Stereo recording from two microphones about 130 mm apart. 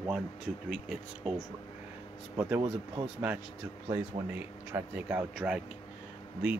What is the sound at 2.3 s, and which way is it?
Speech, 15° right (ahead or behind).